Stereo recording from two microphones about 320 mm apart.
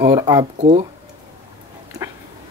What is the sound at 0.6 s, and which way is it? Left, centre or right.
Speech, centre.